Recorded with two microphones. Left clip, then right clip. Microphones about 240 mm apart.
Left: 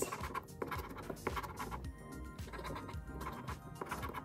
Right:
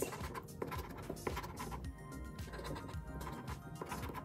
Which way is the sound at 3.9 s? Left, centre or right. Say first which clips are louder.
Left 3 dB; centre.